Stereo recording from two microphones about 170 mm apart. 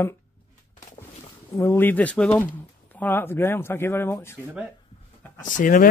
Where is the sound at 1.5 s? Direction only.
15° left (ahead or behind).